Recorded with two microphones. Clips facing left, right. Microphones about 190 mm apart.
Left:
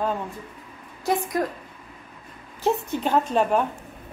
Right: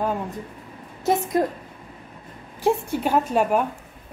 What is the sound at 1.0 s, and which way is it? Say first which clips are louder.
Speech: right 3 dB; 20° right (ahead or behind).